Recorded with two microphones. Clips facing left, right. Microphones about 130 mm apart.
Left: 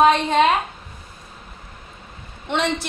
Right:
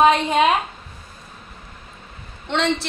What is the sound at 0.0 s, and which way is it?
Speech, 5° right (ahead or behind).